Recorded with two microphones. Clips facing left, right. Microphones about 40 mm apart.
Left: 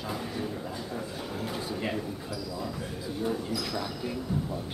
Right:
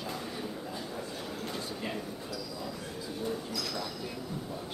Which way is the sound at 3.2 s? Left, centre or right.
Centre.